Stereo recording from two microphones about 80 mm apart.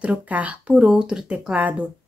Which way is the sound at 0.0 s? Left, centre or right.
Centre.